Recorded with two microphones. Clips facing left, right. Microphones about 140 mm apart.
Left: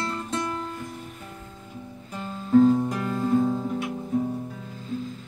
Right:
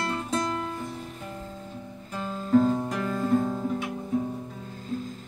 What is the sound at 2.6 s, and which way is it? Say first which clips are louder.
Music: left 5 dB; centre (ahead or behind).